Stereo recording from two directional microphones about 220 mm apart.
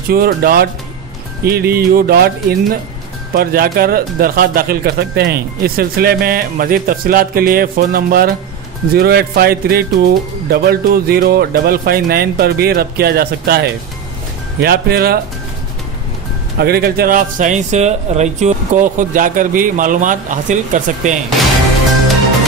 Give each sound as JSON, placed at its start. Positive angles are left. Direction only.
{"t": 0.1, "sound": "speech", "side_deg": -40}
{"t": 16.5, "sound": "speech", "side_deg": -45}